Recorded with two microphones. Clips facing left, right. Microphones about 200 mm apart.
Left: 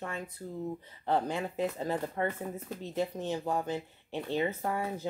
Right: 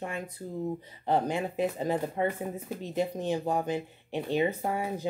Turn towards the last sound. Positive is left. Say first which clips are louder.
# right 2 dB
turn(degrees=-15)  # may be behind; listen again after turning